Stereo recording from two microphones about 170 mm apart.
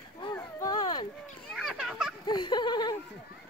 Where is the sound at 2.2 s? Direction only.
25° left (ahead or behind).